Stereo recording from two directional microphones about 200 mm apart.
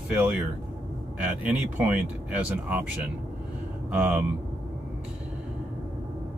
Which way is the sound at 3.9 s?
10° right (ahead or behind).